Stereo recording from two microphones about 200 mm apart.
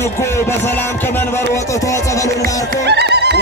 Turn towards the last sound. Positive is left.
turn(degrees=-55)  # may be behind; listen again after turning